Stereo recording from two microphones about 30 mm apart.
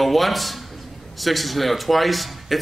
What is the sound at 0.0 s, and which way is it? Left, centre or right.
A man's voice, centre.